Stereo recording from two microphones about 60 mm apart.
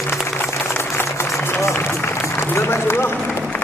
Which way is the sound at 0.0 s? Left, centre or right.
Left.